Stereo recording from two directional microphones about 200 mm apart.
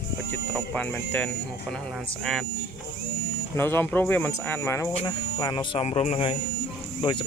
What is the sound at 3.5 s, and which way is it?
Speech, 10° left (ahead or behind).